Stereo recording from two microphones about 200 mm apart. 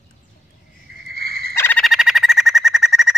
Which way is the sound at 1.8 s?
Centre (ahead or behind).